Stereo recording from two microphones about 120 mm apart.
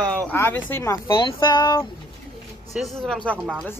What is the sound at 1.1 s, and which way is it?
Speech, 40° left (ahead or behind).